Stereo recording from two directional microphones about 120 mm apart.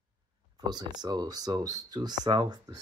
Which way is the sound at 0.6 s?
35° right (ahead or behind).